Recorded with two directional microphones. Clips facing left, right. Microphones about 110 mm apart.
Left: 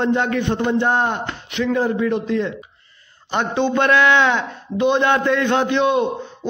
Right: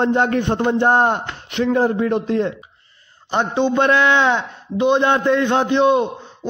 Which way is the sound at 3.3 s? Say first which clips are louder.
Right 1 dB; 25° right (ahead or behind).